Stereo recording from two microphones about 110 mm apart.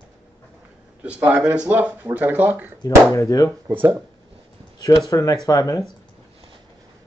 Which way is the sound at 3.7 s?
20° right (ahead or behind).